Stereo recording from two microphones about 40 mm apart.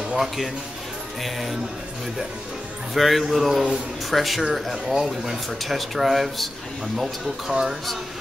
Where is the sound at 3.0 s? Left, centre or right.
Centre.